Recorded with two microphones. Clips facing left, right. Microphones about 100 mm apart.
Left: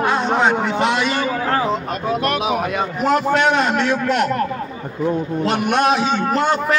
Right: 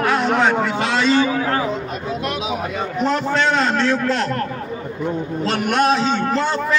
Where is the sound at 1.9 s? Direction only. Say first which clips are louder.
Left 4 dB; 60° left (ahead or behind).